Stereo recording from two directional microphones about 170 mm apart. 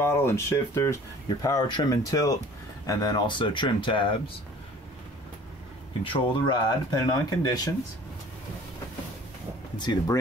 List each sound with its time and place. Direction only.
0.0 s speech: 15° left (ahead or behind)
6.1 s speech: 25° left (ahead or behind)
9.8 s speech: 25° left (ahead or behind)